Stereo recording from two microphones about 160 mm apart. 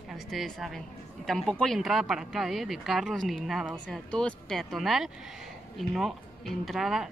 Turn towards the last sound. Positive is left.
turn(degrees=0)  # may be behind; listen again after turning